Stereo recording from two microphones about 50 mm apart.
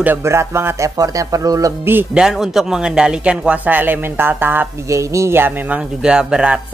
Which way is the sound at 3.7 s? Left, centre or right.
Right.